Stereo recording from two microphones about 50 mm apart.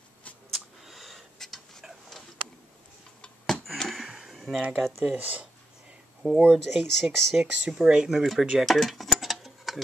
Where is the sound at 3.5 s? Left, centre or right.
Centre.